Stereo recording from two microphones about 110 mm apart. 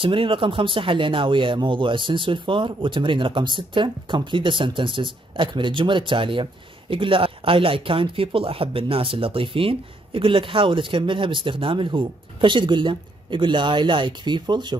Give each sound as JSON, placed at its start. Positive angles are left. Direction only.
{"t": 0.0, "sound": "speech", "side_deg": -50}